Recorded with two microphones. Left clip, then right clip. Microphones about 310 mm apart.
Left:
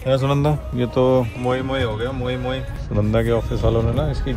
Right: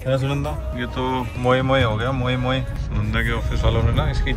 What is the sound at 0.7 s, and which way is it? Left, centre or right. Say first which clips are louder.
Speech: left 7 dB; centre.